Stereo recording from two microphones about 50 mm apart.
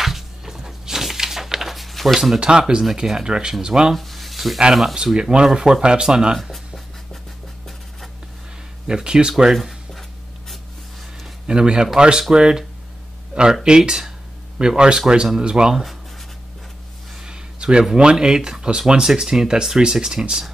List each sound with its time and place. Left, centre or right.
0.0 s music: centre
2.1 s speech: centre
3.9 s a sound: centre
4.9 s speech: centre
6.3 s speech: centre
8.8 s speech: centre
9.4 s a sound: centre
11.4 s speech: centre
17.2 s a sound: centre
17.9 s speech: centre